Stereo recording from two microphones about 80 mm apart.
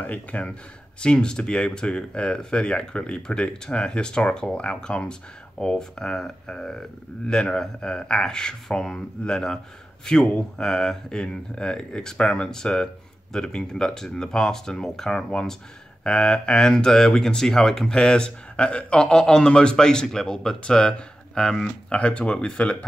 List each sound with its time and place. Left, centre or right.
0.0 s speech: centre